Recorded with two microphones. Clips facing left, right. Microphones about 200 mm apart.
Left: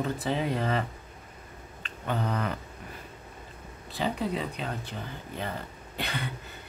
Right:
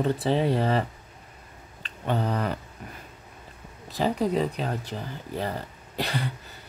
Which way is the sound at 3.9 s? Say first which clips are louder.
Right 5 dB; 40° right (ahead or behind).